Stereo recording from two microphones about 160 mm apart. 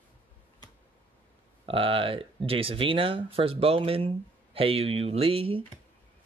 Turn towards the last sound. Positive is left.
turn(degrees=-35)  # may be behind; listen again after turning